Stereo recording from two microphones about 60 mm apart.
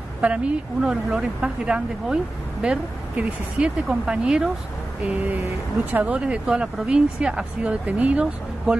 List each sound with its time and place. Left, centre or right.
0.2 s speech: right
5.0 s a sound: right
6.1 s speech: centre